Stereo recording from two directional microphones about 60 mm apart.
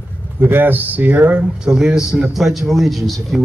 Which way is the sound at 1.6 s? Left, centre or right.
Centre.